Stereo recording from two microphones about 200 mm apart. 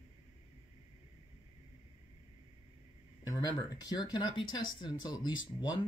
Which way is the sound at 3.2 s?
20° left (ahead or behind).